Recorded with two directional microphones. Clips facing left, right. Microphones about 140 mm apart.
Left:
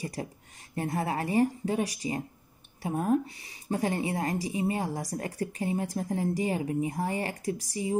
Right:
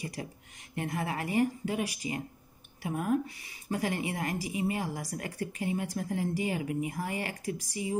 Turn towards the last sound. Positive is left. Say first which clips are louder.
# left 3 dB
turn(degrees=35)  # may be behind; listen again after turning